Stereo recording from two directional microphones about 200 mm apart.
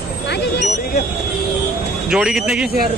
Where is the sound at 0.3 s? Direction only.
60° left (ahead or behind).